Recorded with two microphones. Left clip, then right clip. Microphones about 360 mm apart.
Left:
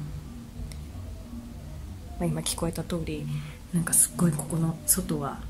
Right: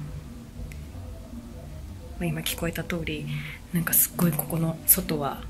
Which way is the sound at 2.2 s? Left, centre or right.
Centre.